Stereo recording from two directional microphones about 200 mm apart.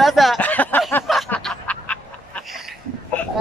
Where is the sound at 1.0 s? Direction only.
5° left (ahead or behind).